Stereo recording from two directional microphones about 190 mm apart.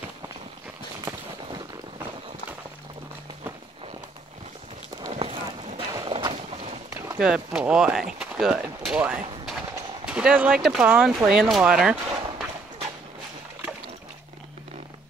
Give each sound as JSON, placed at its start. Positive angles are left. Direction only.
{"t": 5.1, "sound": "clip-clop", "side_deg": -30}
{"t": 6.9, "sound": "speech", "side_deg": -10}